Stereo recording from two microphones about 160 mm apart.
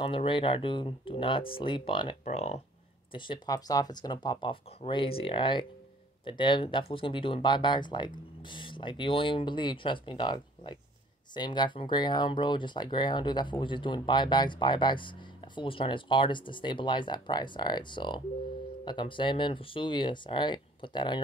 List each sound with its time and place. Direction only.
0.0 s speech: 35° left (ahead or behind)
2.2 s speech: 45° left (ahead or behind)
3.1 s speech: 30° left (ahead or behind)